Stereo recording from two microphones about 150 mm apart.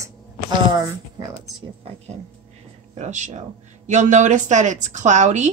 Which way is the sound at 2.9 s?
50° right (ahead or behind).